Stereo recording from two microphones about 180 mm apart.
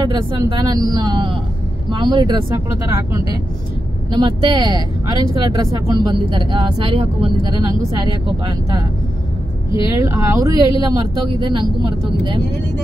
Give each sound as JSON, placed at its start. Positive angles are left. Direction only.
{"t": 0.0, "sound": "speech", "side_deg": -20}
{"t": 4.1, "sound": "speech", "side_deg": -25}
{"t": 10.0, "sound": "speech", "side_deg": -20}